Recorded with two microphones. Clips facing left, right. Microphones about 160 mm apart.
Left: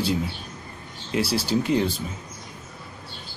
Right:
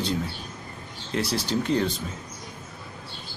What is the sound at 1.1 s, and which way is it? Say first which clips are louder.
Speech: left 3 dB; 5° left (ahead or behind).